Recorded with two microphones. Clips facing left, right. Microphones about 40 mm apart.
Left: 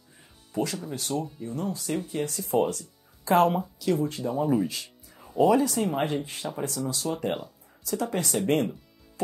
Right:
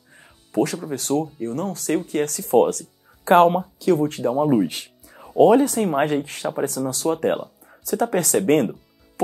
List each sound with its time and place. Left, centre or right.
0.5 s speech: right
4.3 s speech: right
4.6 s music: right
5.4 s speech: right